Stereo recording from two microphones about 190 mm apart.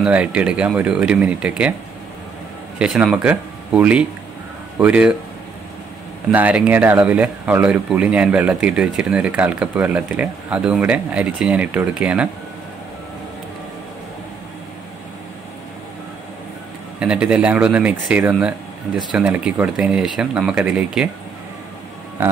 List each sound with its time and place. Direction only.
0.0 s speech: 5° right (ahead or behind)
2.8 s speech: 5° right (ahead or behind)
6.3 s speech: 5° right (ahead or behind)
17.0 s speech: 5° right (ahead or behind)